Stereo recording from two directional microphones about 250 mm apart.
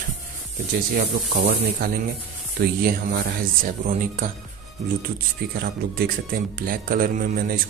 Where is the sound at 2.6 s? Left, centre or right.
Right.